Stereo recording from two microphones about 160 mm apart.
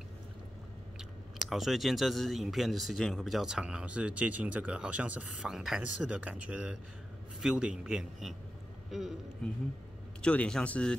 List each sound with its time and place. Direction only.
1.5 s speech: centre (ahead or behind)